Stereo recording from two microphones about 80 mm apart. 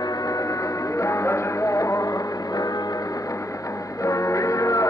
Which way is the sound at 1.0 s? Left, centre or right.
Left.